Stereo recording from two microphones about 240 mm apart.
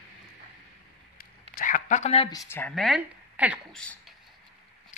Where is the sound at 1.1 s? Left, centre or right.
Left.